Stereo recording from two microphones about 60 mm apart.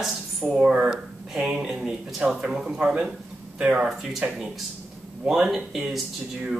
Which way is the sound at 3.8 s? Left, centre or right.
Centre.